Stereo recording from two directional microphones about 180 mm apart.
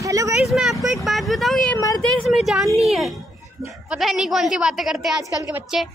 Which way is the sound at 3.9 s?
Centre (ahead or behind).